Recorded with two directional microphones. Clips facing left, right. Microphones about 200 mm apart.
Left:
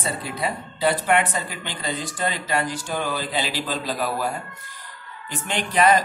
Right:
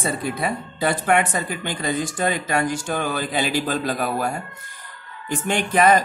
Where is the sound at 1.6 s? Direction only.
50° right (ahead or behind).